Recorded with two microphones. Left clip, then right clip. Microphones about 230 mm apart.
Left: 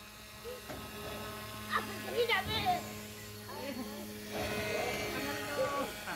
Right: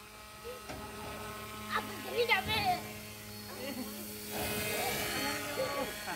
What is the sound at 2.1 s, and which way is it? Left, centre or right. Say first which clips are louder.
Music: right 2 dB; right.